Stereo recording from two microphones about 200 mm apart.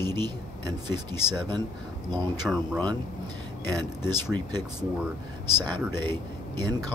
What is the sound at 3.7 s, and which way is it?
Speech, 20° right (ahead or behind).